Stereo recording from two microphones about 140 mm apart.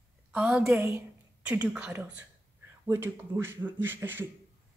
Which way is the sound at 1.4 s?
10° right (ahead or behind).